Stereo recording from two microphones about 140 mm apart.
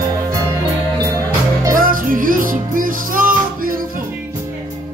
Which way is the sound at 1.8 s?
85° right.